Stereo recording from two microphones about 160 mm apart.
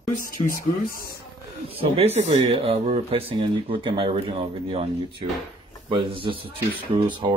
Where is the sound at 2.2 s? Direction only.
45° right (ahead or behind).